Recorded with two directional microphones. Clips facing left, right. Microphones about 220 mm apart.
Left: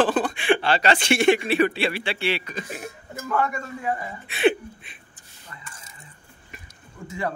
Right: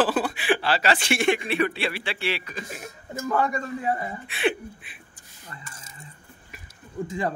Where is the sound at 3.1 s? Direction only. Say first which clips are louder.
Right 1 dB; 35° right (ahead or behind).